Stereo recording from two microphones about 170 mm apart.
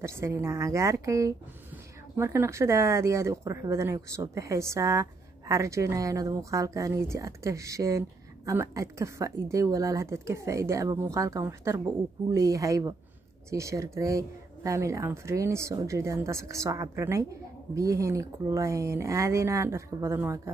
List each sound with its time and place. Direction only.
0.0 s speech: 15° right (ahead or behind)